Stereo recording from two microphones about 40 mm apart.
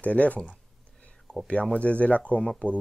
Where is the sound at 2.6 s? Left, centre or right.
Left.